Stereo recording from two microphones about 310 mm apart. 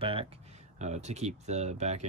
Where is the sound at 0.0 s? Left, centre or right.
Centre.